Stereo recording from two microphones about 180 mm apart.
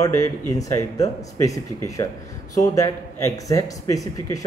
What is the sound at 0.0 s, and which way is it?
Speech, 20° left (ahead or behind).